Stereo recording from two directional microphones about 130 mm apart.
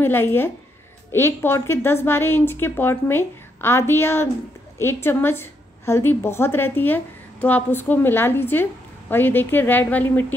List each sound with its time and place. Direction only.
0.0 s a woman's voice: 15° left (ahead or behind)